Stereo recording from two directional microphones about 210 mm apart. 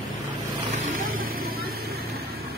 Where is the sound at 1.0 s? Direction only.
45° right (ahead or behind).